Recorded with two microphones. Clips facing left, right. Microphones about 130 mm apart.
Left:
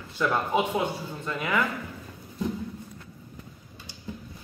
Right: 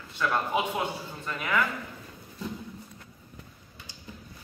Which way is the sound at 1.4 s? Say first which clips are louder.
Left 1 dB; 20° left (ahead or behind).